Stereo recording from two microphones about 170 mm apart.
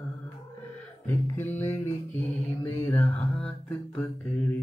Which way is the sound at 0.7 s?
15° left (ahead or behind).